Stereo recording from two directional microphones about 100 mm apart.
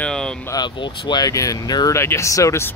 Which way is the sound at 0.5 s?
50° left (ahead or behind).